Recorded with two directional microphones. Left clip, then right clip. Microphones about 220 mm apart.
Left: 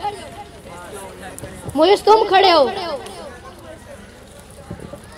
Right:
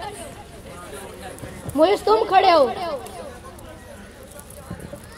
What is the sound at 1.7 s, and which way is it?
A woman's voice, 35° left (ahead or behind).